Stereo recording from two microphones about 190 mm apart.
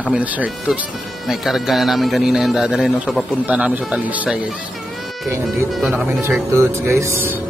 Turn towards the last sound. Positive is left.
turn(degrees=-15)  # may be behind; listen again after turning